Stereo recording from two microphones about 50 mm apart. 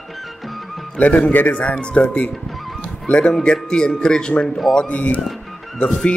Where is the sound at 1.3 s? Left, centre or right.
Left.